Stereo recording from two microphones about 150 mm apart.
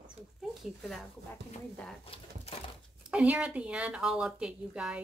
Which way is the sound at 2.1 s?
40° left (ahead or behind).